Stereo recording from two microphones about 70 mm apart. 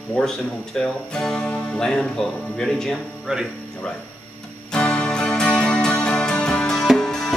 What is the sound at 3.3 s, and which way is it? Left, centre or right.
Speech, centre.